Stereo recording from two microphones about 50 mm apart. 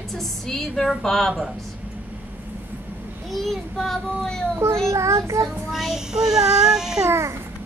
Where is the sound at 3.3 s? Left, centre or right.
Centre.